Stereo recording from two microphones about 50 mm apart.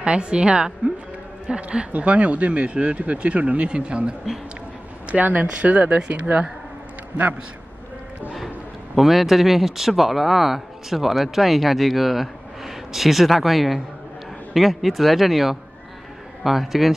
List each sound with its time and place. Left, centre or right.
0.0 s speech: right
5.1 s speech: right
8.9 s speech: centre